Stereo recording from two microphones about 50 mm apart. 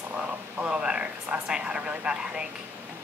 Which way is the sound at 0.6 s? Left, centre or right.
Right.